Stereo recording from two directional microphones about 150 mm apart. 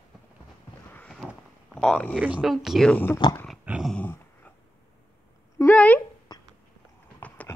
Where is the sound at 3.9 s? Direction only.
10° left (ahead or behind).